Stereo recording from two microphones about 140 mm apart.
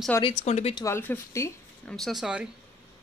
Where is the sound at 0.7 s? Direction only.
20° left (ahead or behind).